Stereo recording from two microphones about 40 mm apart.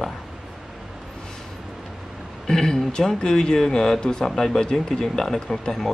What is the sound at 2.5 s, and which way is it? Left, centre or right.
Speech, centre.